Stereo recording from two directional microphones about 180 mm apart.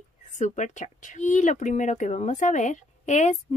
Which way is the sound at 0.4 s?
40° left (ahead or behind).